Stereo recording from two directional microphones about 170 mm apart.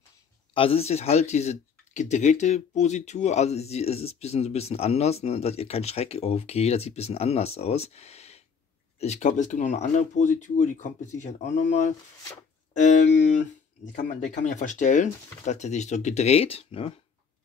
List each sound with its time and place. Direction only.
0.6 s speech: 35° left (ahead or behind)